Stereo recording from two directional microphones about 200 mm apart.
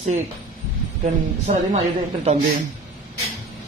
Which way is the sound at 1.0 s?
35° right (ahead or behind).